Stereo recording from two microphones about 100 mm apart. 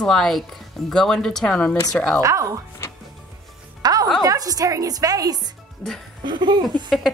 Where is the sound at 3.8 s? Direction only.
40° right (ahead or behind).